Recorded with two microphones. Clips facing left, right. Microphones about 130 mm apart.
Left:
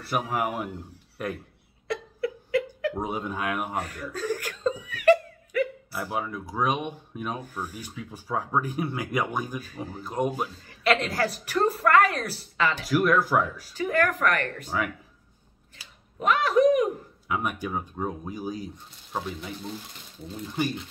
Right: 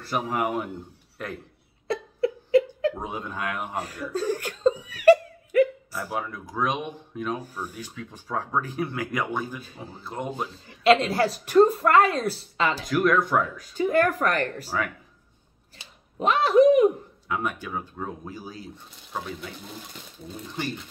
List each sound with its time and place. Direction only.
0.1 s speech: centre (ahead or behind)
1.9 s a sound: 25° right (ahead or behind)
2.9 s speech: 10° left (ahead or behind)
3.7 s laughter: 30° right (ahead or behind)
5.9 s speech: 10° left (ahead or behind)
7.5 s speech: centre (ahead or behind)
7.8 s speech: 10° left (ahead or behind)
10.8 s a woman's voice: 25° right (ahead or behind)
12.8 s speech: 5° left (ahead or behind)
13.7 s a woman's voice: 25° right (ahead or behind)
15.8 s a sound: 25° right (ahead or behind)
17.3 s speech: 10° left (ahead or behind)